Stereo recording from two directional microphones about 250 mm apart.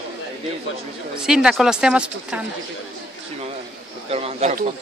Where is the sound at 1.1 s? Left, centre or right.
Centre.